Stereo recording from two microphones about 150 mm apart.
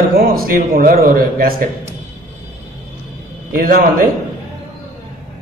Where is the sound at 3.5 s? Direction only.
75° right (ahead or behind).